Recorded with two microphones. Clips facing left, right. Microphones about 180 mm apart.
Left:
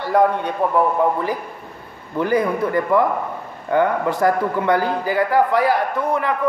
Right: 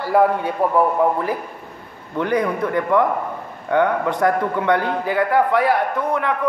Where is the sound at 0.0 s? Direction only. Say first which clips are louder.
Even; 5° right (ahead or behind).